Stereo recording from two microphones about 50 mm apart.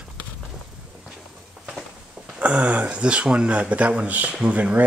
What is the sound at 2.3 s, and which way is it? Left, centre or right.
Speech, right.